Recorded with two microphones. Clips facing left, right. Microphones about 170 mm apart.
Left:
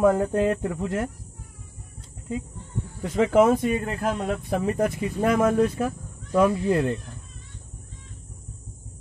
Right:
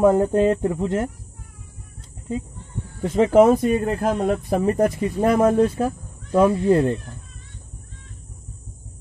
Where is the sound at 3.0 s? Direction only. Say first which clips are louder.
Right 4 dB; 30° right (ahead or behind).